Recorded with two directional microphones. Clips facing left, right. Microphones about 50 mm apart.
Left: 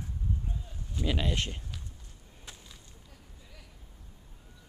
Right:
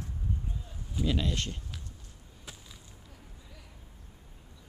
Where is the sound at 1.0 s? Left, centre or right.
Centre.